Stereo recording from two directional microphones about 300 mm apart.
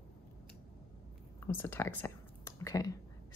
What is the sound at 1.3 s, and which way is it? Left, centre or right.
A woman's voice, centre.